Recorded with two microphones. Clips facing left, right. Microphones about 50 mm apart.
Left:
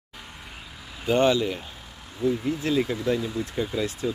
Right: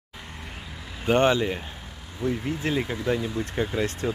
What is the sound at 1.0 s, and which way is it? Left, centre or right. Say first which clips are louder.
Speech: even; right.